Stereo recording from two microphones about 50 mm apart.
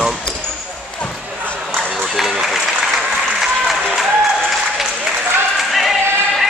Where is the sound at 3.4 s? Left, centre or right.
Centre.